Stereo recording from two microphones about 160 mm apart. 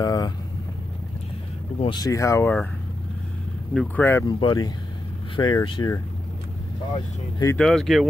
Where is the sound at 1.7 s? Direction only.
30° left (ahead or behind).